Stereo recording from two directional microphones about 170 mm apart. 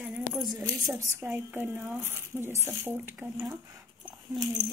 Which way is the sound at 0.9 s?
10° right (ahead or behind).